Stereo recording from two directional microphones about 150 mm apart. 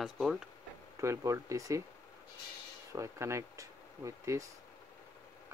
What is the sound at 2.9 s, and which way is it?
Speech, 20° right (ahead or behind).